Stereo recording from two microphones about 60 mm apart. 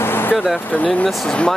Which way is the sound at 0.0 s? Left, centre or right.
Left.